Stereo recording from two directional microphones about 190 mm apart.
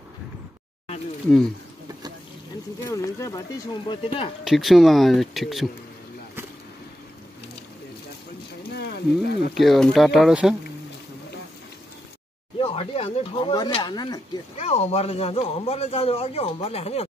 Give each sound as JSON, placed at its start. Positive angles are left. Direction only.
{"t": 2.9, "sound": "speech", "side_deg": 15}
{"t": 4.5, "sound": "speech", "side_deg": 0}
{"t": 8.7, "sound": "a sound", "side_deg": 60}
{"t": 9.5, "sound": "speech", "side_deg": 0}
{"t": 12.5, "sound": "speech", "side_deg": 30}
{"t": 14.6, "sound": "speech", "side_deg": 35}